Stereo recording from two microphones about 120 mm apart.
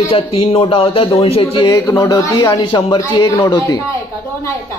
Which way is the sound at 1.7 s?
25° left (ahead or behind).